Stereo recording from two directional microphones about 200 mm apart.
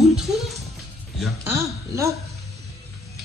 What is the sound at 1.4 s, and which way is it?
Speech, 15° right (ahead or behind).